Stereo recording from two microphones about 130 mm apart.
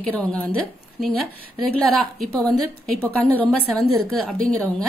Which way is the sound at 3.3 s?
Centre (ahead or behind).